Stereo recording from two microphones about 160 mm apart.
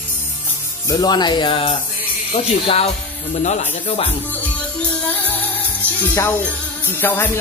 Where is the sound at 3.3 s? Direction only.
45° left (ahead or behind).